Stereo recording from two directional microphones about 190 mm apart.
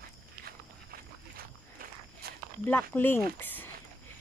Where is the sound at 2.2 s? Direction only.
55° right (ahead or behind).